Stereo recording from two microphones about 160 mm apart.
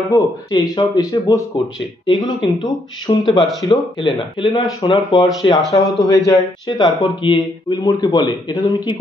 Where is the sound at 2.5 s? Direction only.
25° left (ahead or behind).